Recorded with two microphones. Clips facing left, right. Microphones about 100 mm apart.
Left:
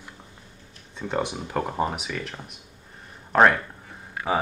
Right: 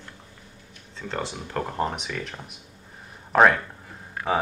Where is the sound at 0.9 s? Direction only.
15° left (ahead or behind); by 2.6 s centre (ahead or behind).